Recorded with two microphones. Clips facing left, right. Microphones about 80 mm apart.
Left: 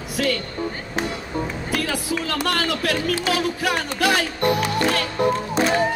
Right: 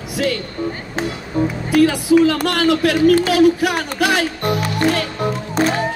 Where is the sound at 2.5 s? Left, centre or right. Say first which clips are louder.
Right 7 dB; right.